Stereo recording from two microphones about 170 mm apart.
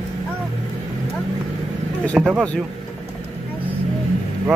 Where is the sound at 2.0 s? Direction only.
5° left (ahead or behind).